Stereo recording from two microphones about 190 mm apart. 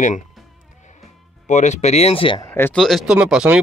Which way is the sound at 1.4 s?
40° left (ahead or behind).